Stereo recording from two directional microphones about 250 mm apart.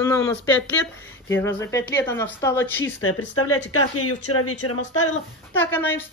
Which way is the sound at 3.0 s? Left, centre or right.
Left.